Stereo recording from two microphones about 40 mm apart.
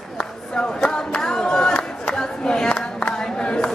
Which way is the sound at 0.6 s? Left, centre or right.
Left.